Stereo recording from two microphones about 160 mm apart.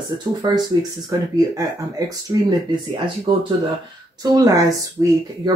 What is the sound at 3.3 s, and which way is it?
Speech, 30° right (ahead or behind).